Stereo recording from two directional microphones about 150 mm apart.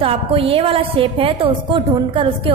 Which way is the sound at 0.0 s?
40° right (ahead or behind).